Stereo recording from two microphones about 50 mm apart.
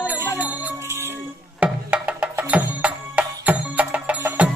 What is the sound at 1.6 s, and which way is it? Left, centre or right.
Music, right.